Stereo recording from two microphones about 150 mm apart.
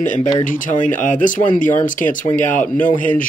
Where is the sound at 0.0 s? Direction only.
60° left (ahead or behind).